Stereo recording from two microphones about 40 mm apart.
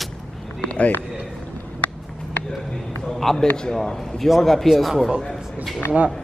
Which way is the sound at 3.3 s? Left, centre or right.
Centre.